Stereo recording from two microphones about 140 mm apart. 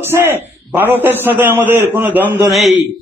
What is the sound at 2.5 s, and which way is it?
Speech, centre (ahead or behind).